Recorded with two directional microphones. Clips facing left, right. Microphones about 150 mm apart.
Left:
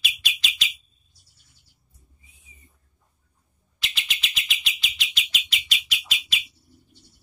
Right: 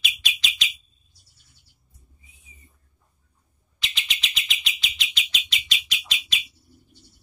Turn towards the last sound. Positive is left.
turn(degrees=5)  # may be behind; listen again after turning